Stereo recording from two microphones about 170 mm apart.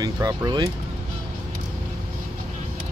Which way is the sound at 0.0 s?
20° right (ahead or behind).